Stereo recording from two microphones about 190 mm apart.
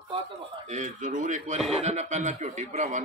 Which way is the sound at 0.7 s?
40° right (ahead or behind).